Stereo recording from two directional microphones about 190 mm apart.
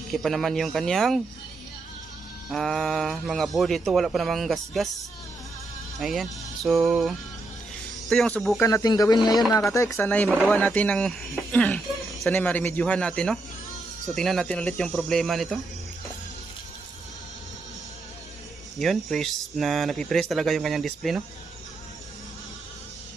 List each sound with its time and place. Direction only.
0.1 s speech: centre (ahead or behind)
2.5 s speech: centre (ahead or behind)
5.9 s speech: centre (ahead or behind)
8.6 s speech: 20° left (ahead or behind); by 15.6 s centre (ahead or behind)
18.8 s speech: centre (ahead or behind)